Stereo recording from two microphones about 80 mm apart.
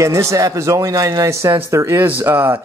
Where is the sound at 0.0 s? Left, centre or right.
Right.